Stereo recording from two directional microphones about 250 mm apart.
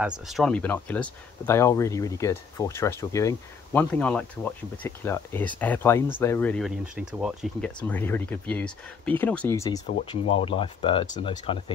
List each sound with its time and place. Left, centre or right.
0.0 s speech: centre
9.8 s speech: left